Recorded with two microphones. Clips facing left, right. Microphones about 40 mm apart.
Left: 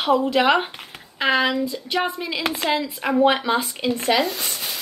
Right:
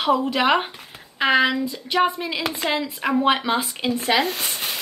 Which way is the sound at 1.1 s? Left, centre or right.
Centre.